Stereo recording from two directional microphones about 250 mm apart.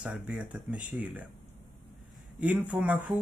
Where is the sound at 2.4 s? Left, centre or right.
Centre.